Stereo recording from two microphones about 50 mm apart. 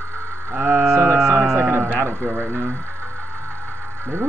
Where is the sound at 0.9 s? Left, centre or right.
Right.